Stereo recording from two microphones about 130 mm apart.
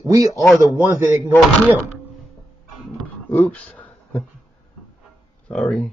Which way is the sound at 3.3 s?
10° left (ahead or behind).